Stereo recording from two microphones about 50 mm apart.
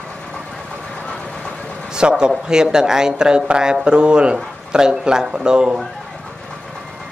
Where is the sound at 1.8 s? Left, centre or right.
Centre.